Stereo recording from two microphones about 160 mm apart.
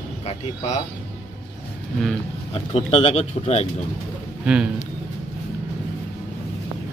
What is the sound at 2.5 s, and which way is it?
Speech, 40° left (ahead or behind).